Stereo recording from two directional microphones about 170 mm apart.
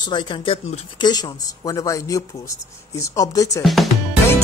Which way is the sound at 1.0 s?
25° left (ahead or behind).